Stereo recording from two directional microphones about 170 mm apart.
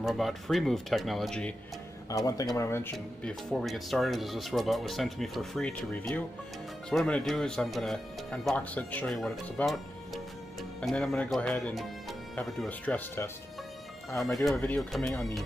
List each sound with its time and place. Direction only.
0.0 s speech: centre (ahead or behind)
2.0 s speech: 20° left (ahead or behind)
3.4 s speech: centre (ahead or behind)
14.1 s speech: centre (ahead or behind)